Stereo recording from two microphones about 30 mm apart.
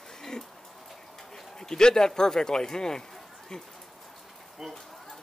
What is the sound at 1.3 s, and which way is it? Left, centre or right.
Speech, centre.